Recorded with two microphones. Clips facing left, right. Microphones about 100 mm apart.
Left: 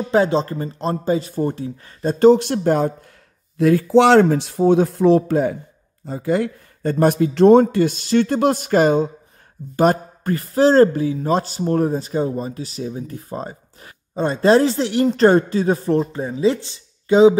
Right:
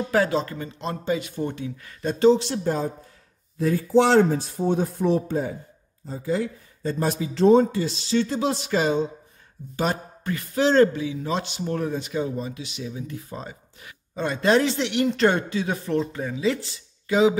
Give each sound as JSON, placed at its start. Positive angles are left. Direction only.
{"t": 0.1, "sound": "a man's voice", "side_deg": 25}
{"t": 2.2, "sound": "speech", "side_deg": 55}
{"t": 3.5, "sound": "a man's voice", "side_deg": 85}